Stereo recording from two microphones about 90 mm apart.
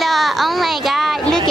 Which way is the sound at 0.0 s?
Centre (ahead or behind).